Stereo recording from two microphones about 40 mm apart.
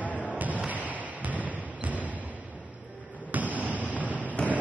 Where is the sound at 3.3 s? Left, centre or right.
Right.